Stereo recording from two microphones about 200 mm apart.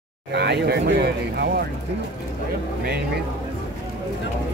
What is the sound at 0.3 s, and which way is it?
Speech, 55° right (ahead or behind).